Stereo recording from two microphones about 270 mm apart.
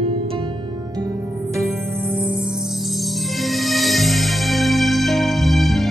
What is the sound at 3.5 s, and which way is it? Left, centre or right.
Music, centre.